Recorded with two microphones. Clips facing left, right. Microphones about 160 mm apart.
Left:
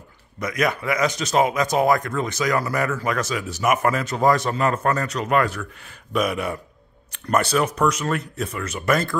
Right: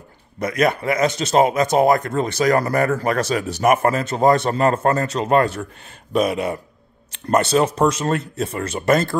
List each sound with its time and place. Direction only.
0.4 s speech: 30° right (ahead or behind)